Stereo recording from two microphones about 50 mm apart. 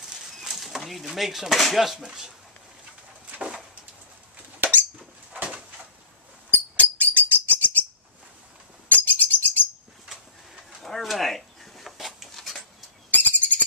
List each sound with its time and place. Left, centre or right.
0.4 s speech: centre
3.3 s a sound: right
6.5 s bird: left
8.8 s bird: left
10.8 s a sound: centre
13.1 s bird: left